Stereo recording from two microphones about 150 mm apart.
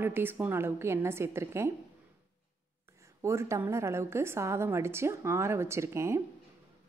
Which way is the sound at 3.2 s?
20° right (ahead or behind).